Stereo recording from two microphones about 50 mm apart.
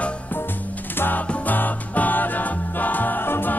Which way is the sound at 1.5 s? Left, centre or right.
Left.